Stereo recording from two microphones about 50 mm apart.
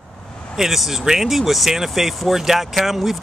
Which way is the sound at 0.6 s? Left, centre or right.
Centre.